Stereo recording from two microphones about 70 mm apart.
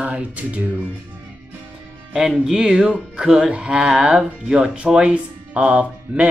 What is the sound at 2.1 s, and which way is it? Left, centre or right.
Speech, centre.